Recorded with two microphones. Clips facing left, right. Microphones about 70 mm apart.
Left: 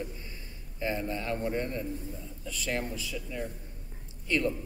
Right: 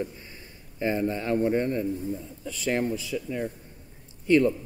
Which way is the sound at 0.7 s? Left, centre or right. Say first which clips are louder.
Right 6 dB; right.